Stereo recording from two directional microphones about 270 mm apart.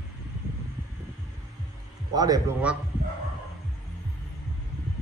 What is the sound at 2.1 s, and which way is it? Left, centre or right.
Speech, centre.